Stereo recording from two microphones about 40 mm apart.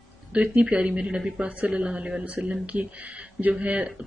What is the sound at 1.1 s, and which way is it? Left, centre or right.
Speech, centre.